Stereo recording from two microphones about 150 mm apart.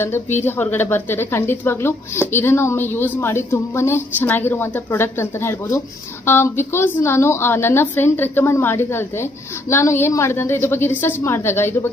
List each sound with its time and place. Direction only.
0.4 s speech: 15° left (ahead or behind)